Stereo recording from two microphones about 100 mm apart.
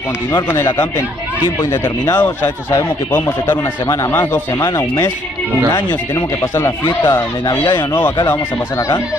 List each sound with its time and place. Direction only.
2.1 s speech: 20° left (ahead or behind)
4.7 s speech: 35° left (ahead or behind)
8.3 s speech: 30° left (ahead or behind)